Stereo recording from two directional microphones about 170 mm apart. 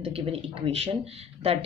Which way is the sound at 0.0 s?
35° right (ahead or behind).